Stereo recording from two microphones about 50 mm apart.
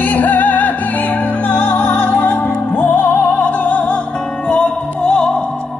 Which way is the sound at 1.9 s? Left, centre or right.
Left.